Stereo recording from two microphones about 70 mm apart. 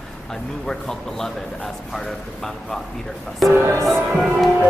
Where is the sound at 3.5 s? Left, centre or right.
Right.